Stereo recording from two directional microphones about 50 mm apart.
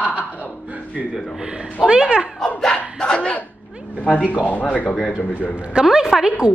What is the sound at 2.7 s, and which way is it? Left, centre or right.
Battle cry, centre.